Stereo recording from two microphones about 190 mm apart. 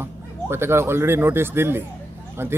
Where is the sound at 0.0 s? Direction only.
10° right (ahead or behind).